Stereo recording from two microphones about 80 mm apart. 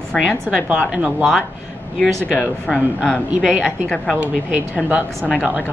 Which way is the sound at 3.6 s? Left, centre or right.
Centre.